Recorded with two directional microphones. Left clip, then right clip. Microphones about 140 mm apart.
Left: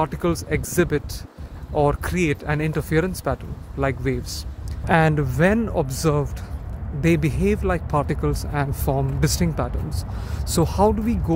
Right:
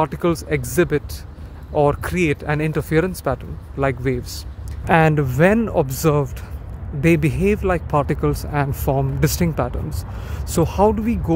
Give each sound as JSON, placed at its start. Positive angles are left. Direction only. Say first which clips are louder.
{"t": 0.0, "sound": "speech", "louder": "right 3 dB", "side_deg": -25}